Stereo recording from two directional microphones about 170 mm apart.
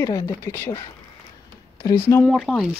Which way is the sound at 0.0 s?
20° left (ahead or behind).